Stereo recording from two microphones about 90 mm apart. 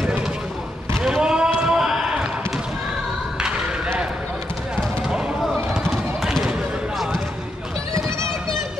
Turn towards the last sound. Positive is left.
turn(degrees=0)  # may be behind; listen again after turning